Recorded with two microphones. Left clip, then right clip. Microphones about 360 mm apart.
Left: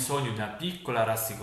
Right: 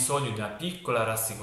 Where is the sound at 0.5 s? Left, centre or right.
Centre.